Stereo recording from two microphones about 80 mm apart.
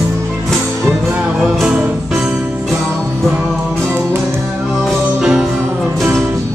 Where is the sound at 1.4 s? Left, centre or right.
Centre.